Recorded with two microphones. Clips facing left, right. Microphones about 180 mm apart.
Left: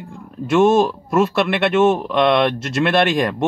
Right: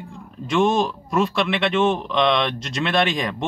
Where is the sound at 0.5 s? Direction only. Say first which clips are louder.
Left 5 dB; 50° left (ahead or behind).